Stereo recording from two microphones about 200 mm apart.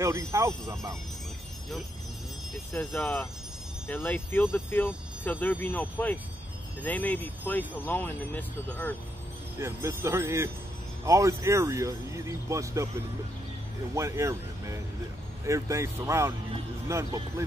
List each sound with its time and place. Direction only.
0.0 s speech: 15° right (ahead or behind)
2.7 s speech: 5° left (ahead or behind)
9.6 s speech: 15° right (ahead or behind)
13.9 s speech: 15° right (ahead or behind)